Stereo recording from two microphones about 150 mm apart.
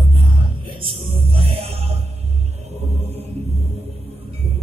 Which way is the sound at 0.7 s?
35° right (ahead or behind).